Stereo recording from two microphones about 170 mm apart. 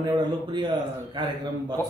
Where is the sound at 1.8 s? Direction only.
10° left (ahead or behind).